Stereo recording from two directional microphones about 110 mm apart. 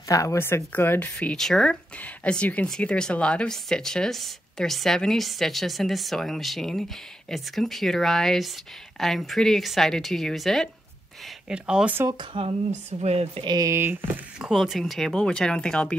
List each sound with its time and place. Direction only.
0.1 s speech: 30° left (ahead or behind); by 11.9 s 10° right (ahead or behind)
11.9 s speech: 25° right (ahead or behind)
13.0 s speech: 70° right (ahead or behind)
13.4 s speech: 40° right (ahead or behind)
13.7 s speech: 20° right (ahead or behind)
14.4 s speech: centre (ahead or behind)